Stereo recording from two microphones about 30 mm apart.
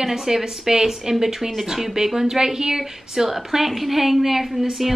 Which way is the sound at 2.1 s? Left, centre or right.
Centre.